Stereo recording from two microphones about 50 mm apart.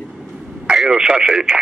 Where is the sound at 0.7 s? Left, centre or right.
Centre.